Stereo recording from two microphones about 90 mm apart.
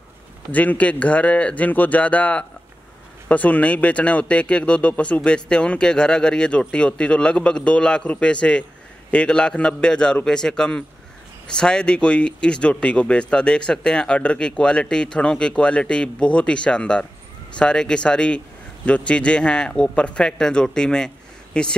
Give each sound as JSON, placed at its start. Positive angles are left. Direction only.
{"t": 0.5, "sound": "speech", "side_deg": 15}